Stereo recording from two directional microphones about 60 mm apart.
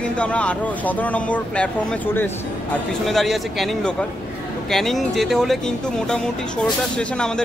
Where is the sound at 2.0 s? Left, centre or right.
Left.